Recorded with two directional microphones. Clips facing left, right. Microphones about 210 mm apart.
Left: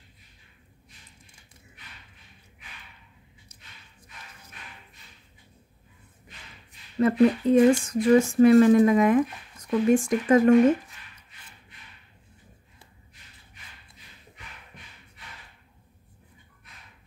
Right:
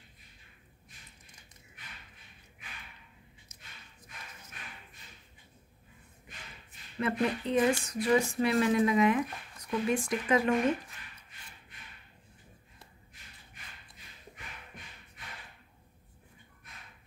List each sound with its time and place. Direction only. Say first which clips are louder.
7.0 s speech: left 10 dB; 45° left (ahead or behind)